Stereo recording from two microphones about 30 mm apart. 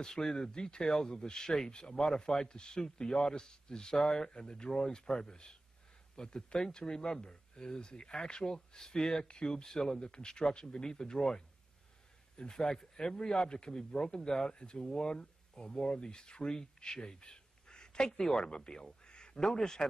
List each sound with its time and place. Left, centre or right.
0.0 s speech: centre
0.5 s speech: left
9.9 s speech: left
12.4 s speech: centre
13.2 s speech: left
14.5 s speech: left
17.2 s a sound: left
18.2 s speech: centre
18.5 s a man's voice: left